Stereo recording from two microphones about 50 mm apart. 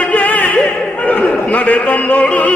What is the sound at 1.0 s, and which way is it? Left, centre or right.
A man's voice, left.